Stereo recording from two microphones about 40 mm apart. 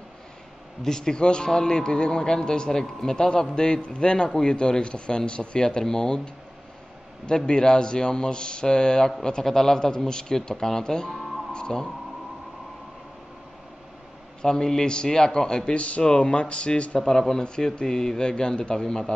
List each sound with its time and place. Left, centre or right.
0.8 s a man's voice: centre
14.4 s a man's voice: centre
15.7 s speech: left
16.0 s a man's voice: centre
17.1 s a man's voice: centre